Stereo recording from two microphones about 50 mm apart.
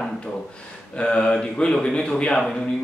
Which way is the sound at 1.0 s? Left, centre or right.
Centre.